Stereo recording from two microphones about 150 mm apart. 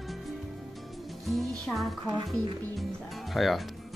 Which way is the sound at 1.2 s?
5° left (ahead or behind).